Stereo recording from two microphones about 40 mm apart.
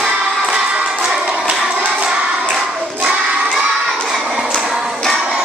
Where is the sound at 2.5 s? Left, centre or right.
Centre.